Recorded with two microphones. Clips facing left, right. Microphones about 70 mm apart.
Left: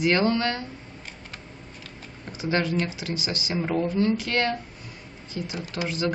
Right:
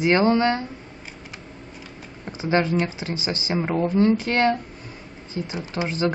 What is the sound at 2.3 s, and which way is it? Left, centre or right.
A woman's voice, right.